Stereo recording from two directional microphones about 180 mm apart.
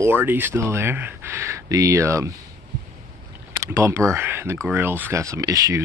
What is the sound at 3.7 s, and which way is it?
Speech, 15° right (ahead or behind).